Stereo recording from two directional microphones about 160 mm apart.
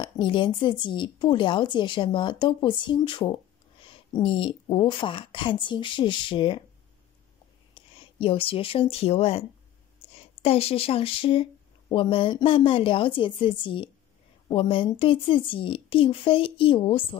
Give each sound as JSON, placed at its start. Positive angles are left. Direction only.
{"t": 0.0, "sound": "a woman's voice", "side_deg": 30}
{"t": 7.7, "sound": "speech", "side_deg": 35}